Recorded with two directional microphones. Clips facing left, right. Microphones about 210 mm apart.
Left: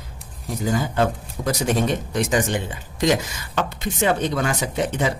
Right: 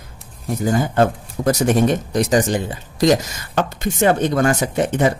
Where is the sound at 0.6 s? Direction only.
50° right (ahead or behind).